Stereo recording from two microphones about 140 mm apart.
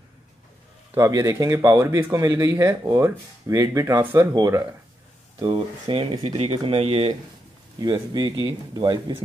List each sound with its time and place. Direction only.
0.9 s speech: 25° right (ahead or behind)
5.4 s speech: 35° right (ahead or behind)
6.2 s speech: 45° right (ahead or behind)
7.8 s speech: 30° right (ahead or behind)